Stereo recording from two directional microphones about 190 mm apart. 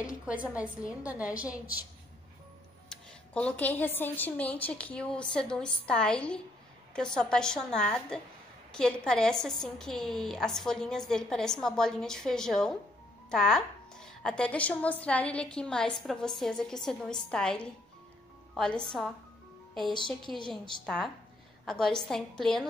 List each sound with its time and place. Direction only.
0.0 s a woman's voice: 5° right (ahead or behind)
2.9 s a woman's voice: 5° left (ahead or behind)
20.3 s a woman's voice: 25° left (ahead or behind)
20.8 s speech: 5° left (ahead or behind)